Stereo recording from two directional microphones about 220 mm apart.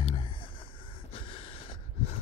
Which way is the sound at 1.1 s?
25° left (ahead or behind).